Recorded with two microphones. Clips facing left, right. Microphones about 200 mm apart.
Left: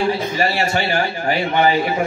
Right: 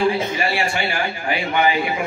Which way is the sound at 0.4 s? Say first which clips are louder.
Left 3 dB; 40° left (ahead or behind).